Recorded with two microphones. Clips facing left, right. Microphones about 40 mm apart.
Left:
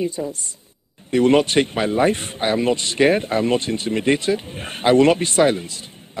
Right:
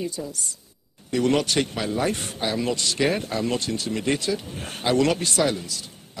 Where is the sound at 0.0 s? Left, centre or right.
Left.